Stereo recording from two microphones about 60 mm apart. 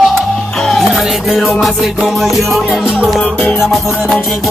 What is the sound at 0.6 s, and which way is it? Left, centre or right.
Music, centre.